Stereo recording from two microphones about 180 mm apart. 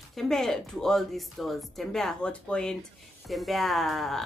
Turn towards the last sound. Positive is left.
turn(degrees=0)  # may be behind; listen again after turning